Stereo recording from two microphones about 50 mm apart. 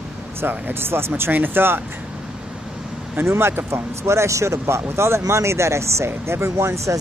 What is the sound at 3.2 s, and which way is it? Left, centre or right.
Speech, right.